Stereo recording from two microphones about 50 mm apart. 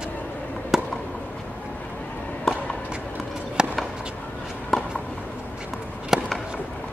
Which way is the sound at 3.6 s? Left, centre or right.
Centre.